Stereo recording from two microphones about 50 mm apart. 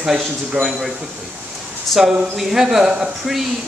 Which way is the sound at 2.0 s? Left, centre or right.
Centre.